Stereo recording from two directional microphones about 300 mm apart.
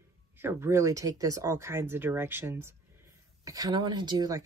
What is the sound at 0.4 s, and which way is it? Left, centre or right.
Speech, centre.